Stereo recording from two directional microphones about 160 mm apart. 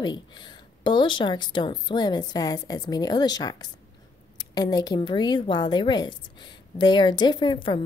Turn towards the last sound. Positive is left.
turn(degrees=25)  # may be behind; listen again after turning